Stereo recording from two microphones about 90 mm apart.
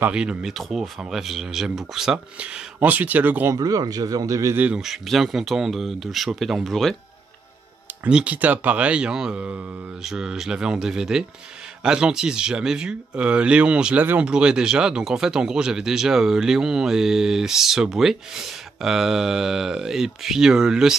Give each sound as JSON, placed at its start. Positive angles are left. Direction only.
{"t": 0.1, "sound": "speech", "side_deg": -10}
{"t": 3.5, "sound": "a man's voice", "side_deg": -45}
{"t": 4.6, "sound": "speech", "side_deg": -10}
{"t": 8.0, "sound": "speech", "side_deg": -15}